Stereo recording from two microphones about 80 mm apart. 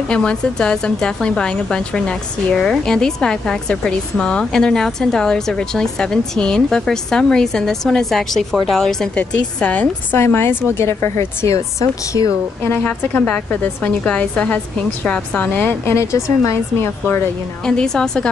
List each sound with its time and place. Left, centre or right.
0.1 s a woman's voice: centre
10.1 s a woman's voice: left
12.1 s speech: right
12.6 s a woman's voice: centre
15.8 s a woman's voice: left
17.6 s a woman's voice: centre